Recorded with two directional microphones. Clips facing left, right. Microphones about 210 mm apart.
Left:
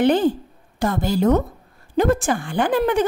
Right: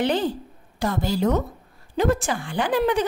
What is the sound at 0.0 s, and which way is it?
A woman's voice, 50° left (ahead or behind).